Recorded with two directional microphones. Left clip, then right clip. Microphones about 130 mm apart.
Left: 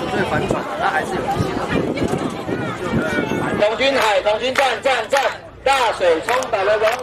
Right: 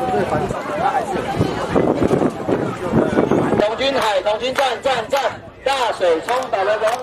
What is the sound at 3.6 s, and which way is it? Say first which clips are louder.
Speech: left 1 dB; centre (ahead or behind).